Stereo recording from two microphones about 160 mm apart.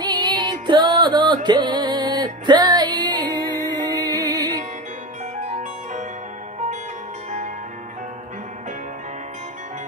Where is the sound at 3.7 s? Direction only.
25° right (ahead or behind).